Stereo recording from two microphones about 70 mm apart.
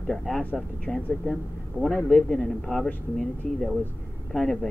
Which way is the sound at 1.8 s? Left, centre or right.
Right.